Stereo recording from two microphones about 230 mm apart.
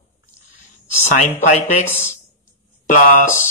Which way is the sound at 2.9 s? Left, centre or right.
Left.